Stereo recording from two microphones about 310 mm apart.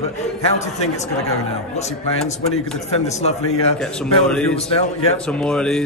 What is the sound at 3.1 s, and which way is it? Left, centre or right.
Speech, left.